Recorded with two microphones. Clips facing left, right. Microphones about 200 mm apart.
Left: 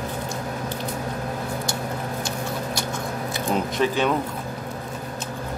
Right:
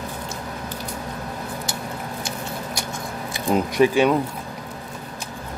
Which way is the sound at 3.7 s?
10° right (ahead or behind).